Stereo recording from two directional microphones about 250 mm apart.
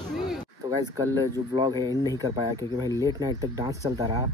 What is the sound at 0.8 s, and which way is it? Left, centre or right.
Speech, centre.